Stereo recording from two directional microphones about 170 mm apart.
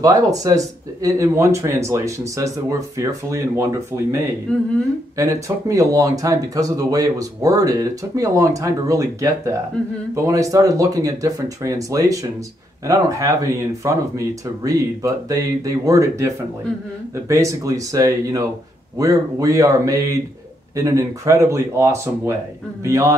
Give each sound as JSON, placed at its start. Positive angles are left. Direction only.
{"t": 0.0, "sound": "speech", "side_deg": -20}
{"t": 4.5, "sound": "speech", "side_deg": 10}
{"t": 5.1, "sound": "speech", "side_deg": -20}